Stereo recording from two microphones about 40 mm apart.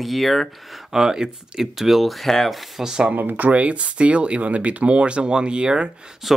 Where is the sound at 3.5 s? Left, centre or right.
Right.